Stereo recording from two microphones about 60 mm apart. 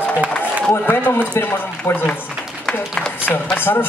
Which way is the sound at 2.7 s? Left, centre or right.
Centre.